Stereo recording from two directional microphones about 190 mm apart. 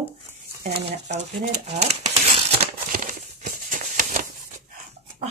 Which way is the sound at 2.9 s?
45° right (ahead or behind).